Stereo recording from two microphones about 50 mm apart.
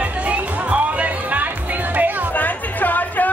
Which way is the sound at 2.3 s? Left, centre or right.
Left.